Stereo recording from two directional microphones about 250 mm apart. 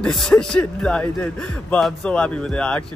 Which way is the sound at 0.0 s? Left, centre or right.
Centre.